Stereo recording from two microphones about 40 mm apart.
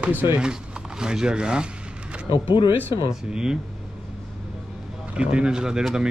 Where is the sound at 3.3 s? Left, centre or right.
Centre.